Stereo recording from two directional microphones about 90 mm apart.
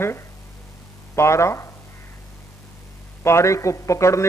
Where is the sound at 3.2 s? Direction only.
30° left (ahead or behind).